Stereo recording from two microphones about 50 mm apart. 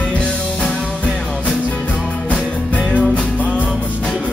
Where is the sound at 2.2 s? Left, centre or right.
Left.